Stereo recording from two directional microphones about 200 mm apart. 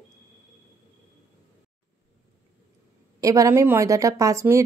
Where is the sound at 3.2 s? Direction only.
15° right (ahead or behind).